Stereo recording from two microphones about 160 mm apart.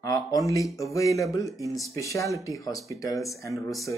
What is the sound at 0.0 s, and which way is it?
Speech, 20° left (ahead or behind).